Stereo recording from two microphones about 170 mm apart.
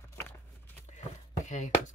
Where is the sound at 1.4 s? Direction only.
45° left (ahead or behind).